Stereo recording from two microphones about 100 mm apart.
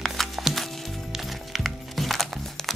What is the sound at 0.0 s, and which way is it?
Music, centre (ahead or behind).